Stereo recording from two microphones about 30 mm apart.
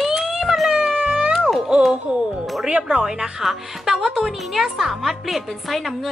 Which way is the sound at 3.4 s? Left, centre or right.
Centre.